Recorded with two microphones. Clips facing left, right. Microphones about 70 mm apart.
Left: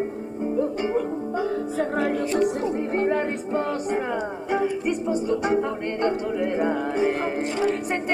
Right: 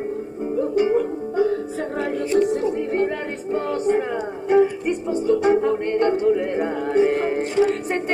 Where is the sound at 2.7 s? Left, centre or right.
Left.